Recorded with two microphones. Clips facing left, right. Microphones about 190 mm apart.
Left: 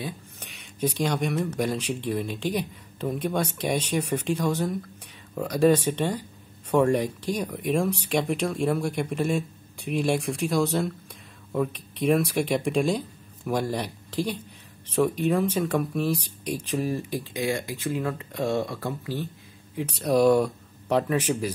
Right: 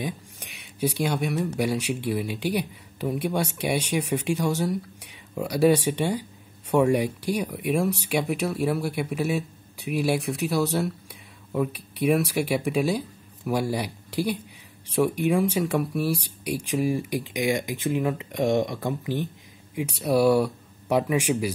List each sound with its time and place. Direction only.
0.0 s speech: 10° right (ahead or behind)